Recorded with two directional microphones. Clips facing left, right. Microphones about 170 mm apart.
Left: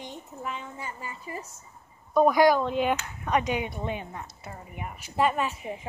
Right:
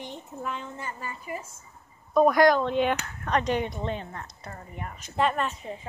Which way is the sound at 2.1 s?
5° left (ahead or behind).